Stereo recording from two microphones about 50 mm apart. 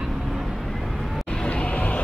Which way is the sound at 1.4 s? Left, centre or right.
Left.